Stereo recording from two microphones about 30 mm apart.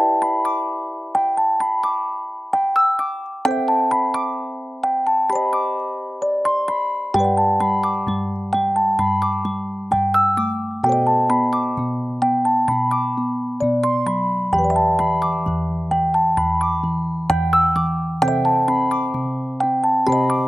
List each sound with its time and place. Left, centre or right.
0.0 s music: centre
4.8 s music: centre
14.1 s music: centre
14.5 s music: centre